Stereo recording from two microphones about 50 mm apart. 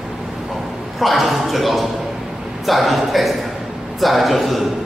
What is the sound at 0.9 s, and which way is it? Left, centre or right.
A man's voice, centre.